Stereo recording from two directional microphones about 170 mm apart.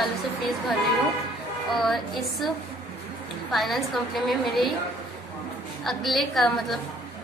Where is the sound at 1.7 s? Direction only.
Centre (ahead or behind).